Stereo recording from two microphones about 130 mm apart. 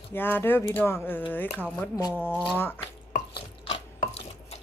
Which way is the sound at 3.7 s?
45° left (ahead or behind).